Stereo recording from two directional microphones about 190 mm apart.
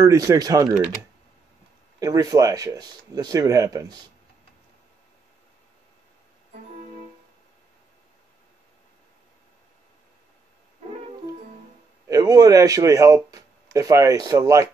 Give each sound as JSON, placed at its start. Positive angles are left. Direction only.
{"t": 0.0, "sound": "speech", "side_deg": -15}
{"t": 2.0, "sound": "speech", "side_deg": -20}
{"t": 12.1, "sound": "speech", "side_deg": -20}